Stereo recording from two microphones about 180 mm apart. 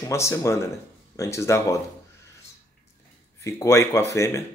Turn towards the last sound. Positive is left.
turn(degrees=15)  # may be behind; listen again after turning